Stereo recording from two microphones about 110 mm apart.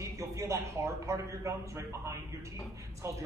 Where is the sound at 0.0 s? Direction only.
25° right (ahead or behind).